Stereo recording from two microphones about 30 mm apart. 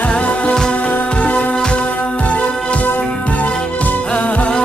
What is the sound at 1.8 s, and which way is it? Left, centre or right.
Music, left.